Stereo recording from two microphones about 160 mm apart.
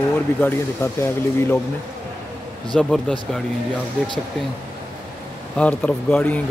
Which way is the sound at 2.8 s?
5° left (ahead or behind).